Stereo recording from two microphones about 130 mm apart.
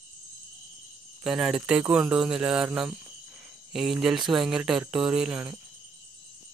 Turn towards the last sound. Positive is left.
turn(degrees=-5)  # may be behind; listen again after turning